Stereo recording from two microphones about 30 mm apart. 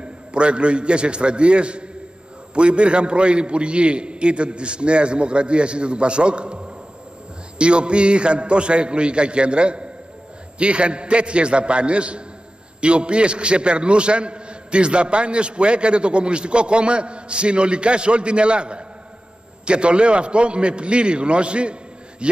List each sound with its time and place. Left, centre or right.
0.0 s a man's voice: right